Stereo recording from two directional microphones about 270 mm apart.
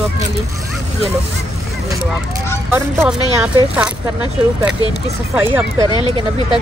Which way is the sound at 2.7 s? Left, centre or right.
Centre.